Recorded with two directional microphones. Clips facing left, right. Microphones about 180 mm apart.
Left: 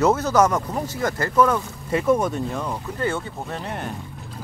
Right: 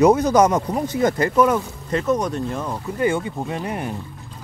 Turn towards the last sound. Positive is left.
turn(degrees=-10)  # may be behind; listen again after turning